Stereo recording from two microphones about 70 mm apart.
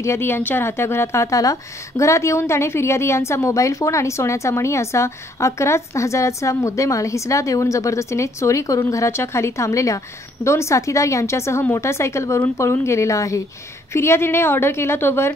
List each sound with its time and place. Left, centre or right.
0.0 s a woman's voice: left